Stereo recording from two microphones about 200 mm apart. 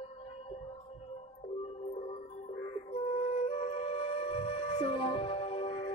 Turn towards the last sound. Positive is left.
turn(degrees=25)  # may be behind; listen again after turning